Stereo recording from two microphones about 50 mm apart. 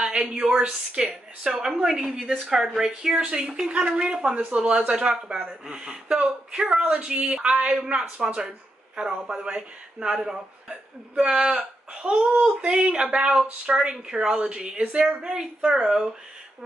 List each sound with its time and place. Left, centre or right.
0.0 s speech: centre
9.0 s speech: centre
14.8 s a woman's voice: right
15.0 s speech: centre